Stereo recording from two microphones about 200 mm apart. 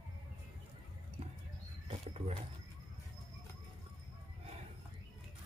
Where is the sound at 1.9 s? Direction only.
30° right (ahead or behind).